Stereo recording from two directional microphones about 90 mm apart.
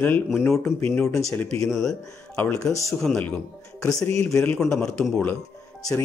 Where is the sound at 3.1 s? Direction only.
15° left (ahead or behind).